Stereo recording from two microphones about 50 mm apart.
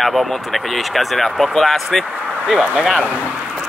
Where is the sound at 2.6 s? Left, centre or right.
Right.